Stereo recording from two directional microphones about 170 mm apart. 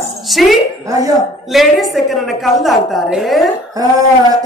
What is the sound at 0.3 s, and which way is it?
A woman's voice, centre (ahead or behind).